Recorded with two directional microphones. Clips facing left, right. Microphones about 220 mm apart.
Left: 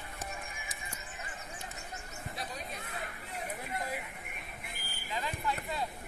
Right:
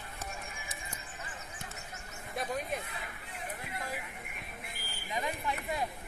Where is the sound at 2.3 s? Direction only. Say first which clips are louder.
Right 8 dB; 50° right (ahead or behind).